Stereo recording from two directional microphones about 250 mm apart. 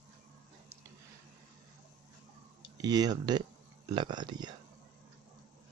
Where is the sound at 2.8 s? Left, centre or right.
Centre.